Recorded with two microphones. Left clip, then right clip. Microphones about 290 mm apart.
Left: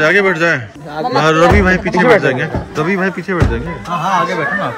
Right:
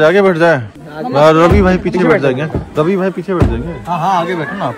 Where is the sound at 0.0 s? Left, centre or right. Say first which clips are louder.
Right 2 dB; centre.